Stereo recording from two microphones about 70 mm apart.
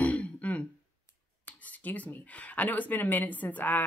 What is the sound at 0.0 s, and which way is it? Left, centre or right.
Throat clearing, left.